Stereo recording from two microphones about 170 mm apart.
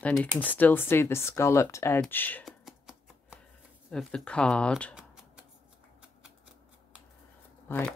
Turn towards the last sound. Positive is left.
turn(degrees=10)  # may be behind; listen again after turning